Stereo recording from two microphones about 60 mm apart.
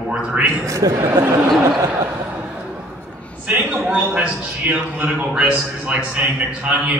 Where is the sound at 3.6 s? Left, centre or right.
Right.